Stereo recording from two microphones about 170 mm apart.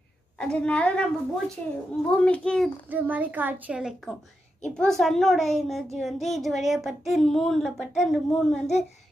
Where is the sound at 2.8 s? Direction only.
10° right (ahead or behind).